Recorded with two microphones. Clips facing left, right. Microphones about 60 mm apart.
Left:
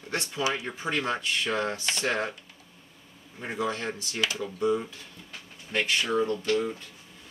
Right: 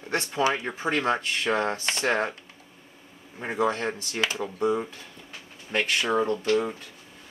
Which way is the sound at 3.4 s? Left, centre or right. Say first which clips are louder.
Right 5 dB; right.